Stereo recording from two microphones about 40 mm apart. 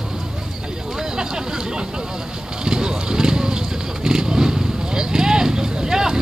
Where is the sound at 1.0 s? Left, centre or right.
Centre.